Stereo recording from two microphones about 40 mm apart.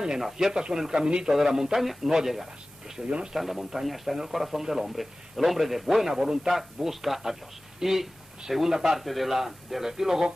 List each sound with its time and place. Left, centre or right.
0.2 s speech: centre
1.0 s a man's voice: right
1.3 s speech: centre